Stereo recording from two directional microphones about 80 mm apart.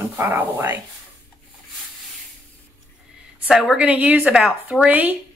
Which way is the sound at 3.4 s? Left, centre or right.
Centre.